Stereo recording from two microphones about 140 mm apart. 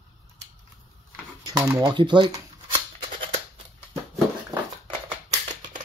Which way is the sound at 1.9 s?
35° right (ahead or behind).